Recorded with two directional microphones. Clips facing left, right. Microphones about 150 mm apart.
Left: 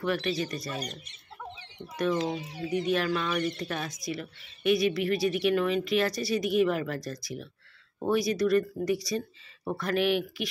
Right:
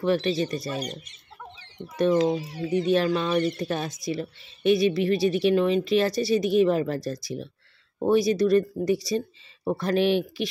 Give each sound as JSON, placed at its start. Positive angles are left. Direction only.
{"t": 0.0, "sound": "speech", "side_deg": -30}
{"t": 2.7, "sound": "speech", "side_deg": -30}